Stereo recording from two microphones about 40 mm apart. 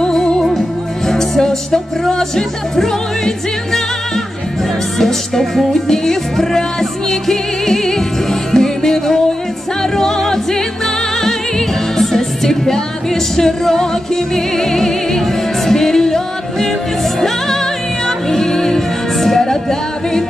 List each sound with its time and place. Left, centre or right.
0.0 s music: centre
4.9 s music: centre
18.0 s music: centre